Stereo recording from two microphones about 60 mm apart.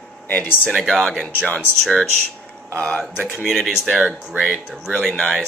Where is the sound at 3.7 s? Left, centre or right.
Centre.